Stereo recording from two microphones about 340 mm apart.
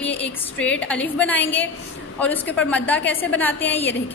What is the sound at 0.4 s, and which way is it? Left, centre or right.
A woman's voice, centre.